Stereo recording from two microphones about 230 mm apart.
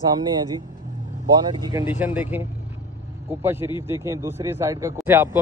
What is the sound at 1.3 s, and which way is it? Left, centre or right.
Speech, centre.